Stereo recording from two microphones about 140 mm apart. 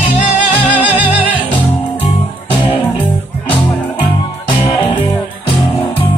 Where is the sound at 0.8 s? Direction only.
10° right (ahead or behind).